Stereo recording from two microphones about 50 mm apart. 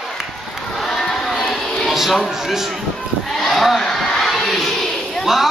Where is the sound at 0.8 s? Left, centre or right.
Centre.